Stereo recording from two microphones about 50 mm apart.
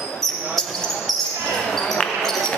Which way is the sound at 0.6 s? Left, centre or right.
Centre.